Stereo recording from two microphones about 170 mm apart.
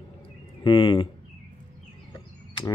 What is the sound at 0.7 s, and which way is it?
Speech, 30° left (ahead or behind).